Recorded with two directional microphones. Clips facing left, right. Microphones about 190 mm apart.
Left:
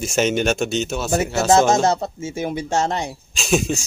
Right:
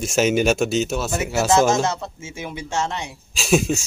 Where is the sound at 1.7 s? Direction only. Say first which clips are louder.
Left 3 dB; 35° left (ahead or behind).